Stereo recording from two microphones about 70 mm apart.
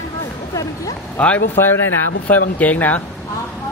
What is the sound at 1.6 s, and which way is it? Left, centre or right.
Speech, left.